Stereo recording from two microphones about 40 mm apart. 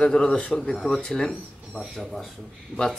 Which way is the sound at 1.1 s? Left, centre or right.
Centre.